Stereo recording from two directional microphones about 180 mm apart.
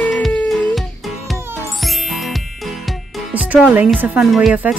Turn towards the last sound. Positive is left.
turn(degrees=-10)  # may be behind; listen again after turning